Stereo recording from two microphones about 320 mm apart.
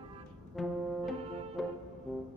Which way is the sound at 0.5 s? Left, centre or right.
Centre.